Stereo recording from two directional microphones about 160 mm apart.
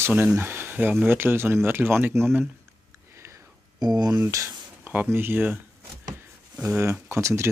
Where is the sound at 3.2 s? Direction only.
15° right (ahead or behind).